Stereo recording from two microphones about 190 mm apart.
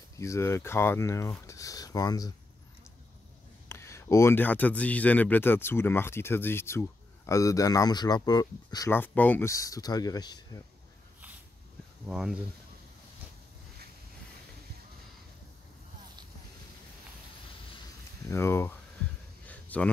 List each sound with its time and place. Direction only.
0.2 s speech: 15° left (ahead or behind)
1.5 s a sound: 20° left (ahead or behind)
3.6 s speech: 15° left (ahead or behind)
12.1 s speech: 5° right (ahead or behind)
18.3 s speech: 15° left (ahead or behind)
19.4 s a sound: 10° left (ahead or behind)